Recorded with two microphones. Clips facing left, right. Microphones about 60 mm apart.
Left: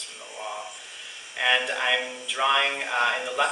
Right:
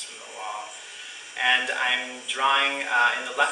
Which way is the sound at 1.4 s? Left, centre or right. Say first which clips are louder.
Right 1 dB; centre.